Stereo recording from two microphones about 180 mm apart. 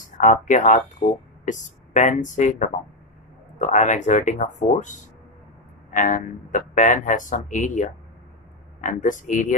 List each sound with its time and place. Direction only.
0.0 s speech: 45° left (ahead or behind)